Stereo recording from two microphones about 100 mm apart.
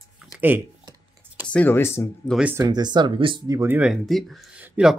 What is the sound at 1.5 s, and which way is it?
Speech, 15° left (ahead or behind).